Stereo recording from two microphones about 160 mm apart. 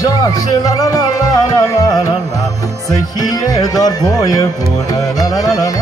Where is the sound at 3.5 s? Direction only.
25° left (ahead or behind).